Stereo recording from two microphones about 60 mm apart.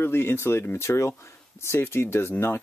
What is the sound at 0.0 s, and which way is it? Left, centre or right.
Speech, left.